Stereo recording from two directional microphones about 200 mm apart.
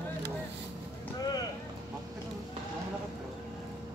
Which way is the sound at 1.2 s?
20° left (ahead or behind).